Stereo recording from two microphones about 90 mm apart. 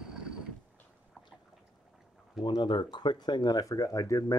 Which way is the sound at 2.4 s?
60° left (ahead or behind).